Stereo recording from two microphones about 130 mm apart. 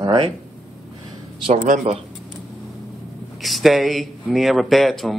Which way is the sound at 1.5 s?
90° right.